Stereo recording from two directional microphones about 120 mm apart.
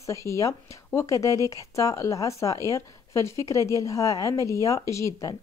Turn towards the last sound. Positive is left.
turn(degrees=25)  # may be behind; listen again after turning